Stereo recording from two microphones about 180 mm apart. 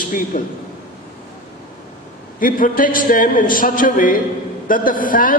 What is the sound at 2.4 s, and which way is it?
A man's voice, 50° left (ahead or behind).